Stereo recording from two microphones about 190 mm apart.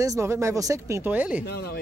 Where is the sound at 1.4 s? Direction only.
60° left (ahead or behind).